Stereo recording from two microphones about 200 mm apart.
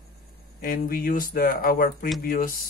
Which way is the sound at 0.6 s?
45° left (ahead or behind).